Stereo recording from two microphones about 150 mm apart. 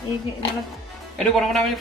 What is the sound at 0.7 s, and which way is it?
A man's voice, centre (ahead or behind).